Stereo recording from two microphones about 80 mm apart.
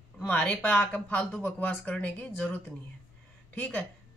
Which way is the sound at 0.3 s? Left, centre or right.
Centre.